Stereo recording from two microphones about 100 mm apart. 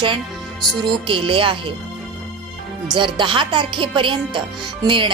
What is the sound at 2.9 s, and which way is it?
Speech, 50° right (ahead or behind).